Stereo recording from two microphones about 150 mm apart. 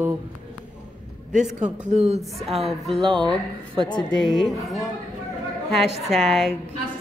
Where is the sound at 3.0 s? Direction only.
35° right (ahead or behind).